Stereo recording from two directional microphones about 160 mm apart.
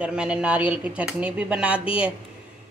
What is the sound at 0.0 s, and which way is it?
Speech, 5° right (ahead or behind).